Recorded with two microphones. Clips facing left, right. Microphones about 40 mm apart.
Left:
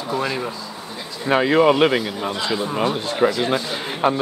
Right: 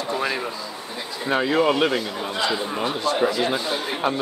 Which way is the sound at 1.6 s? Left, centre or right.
Centre.